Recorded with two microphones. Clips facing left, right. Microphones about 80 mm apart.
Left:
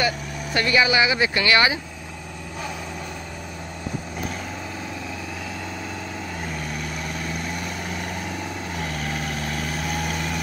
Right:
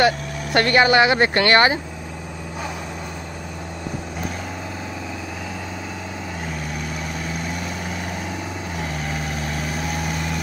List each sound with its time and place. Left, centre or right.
0.0 s speech: right